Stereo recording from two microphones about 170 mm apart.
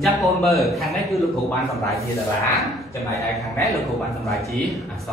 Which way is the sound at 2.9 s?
20° left (ahead or behind).